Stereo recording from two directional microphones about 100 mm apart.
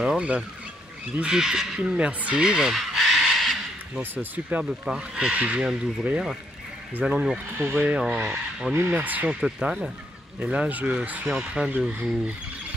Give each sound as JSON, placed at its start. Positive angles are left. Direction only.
{"t": 0.0, "sound": "speech", "side_deg": -10}
{"t": 4.0, "sound": "speech", "side_deg": -20}
{"t": 4.8, "sound": "speech", "side_deg": -5}
{"t": 9.4, "sound": "speech", "side_deg": -5}